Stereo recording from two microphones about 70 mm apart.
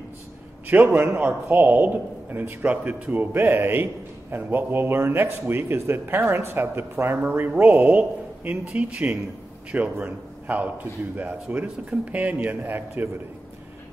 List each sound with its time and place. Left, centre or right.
0.7 s a man's voice: right
11.9 s speech: centre
12.3 s a man's voice: right